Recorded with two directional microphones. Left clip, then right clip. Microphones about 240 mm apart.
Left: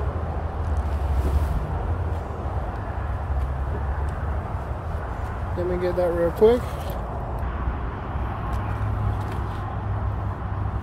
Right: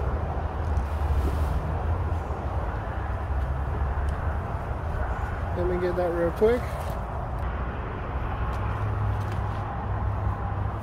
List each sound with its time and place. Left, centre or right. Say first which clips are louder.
5.8 s speech: left 4 dB; left